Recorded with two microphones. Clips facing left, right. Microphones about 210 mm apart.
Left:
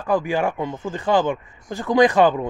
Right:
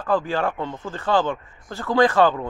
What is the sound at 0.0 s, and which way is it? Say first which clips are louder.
Speech: left 2 dB; 15° left (ahead or behind).